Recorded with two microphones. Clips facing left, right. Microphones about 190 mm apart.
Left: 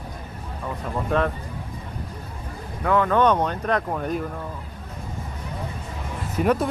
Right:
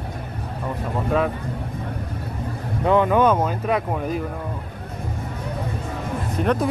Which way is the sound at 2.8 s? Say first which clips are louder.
Right 3 dB; 20° right (ahead or behind).